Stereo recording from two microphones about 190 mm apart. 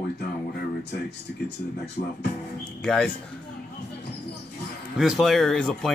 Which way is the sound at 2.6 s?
5° left (ahead or behind).